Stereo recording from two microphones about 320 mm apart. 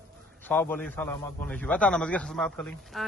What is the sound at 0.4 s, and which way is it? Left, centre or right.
A man's voice, centre.